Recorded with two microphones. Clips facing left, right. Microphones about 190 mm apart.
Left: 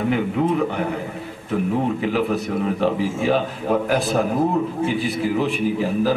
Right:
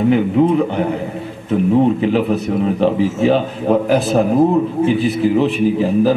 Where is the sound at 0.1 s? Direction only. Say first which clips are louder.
Right 6 dB; 25° right (ahead or behind).